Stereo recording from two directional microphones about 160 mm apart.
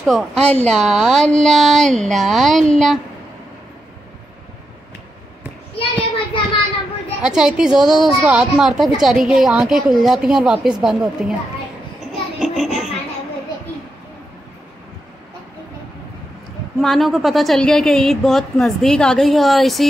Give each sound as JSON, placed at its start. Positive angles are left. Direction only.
{"t": 0.0, "sound": "a woman's voice", "side_deg": 0}
{"t": 5.8, "sound": "child singing", "side_deg": 35}
{"t": 7.2, "sound": "a woman's voice", "side_deg": -5}
{"t": 12.1, "sound": "a sound", "side_deg": 0}
{"t": 16.8, "sound": "a woman's voice", "side_deg": 0}